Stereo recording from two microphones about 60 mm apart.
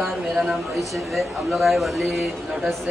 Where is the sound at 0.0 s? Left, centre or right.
Centre.